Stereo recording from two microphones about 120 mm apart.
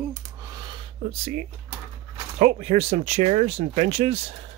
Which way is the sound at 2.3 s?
65° right (ahead or behind).